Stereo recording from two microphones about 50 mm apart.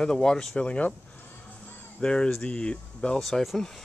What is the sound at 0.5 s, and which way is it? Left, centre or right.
Speech, left.